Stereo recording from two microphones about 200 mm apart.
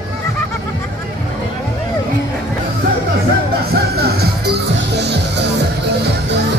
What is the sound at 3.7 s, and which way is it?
Music, 50° right (ahead or behind).